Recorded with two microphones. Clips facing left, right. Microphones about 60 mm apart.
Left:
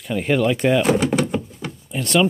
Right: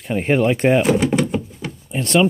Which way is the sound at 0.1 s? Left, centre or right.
Right.